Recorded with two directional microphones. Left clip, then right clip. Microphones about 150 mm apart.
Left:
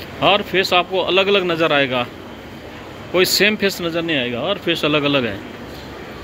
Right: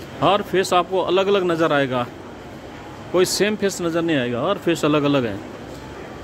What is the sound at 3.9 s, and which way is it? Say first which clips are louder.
Speech: left 1 dB; 45° right (ahead or behind).